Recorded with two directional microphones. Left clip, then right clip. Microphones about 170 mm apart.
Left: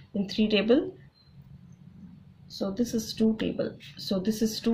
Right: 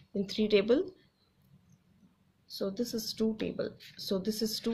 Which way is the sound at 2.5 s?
45° right (ahead or behind).